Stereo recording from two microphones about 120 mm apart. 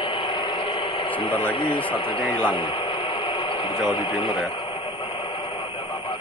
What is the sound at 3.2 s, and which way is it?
Radio, 40° left (ahead or behind).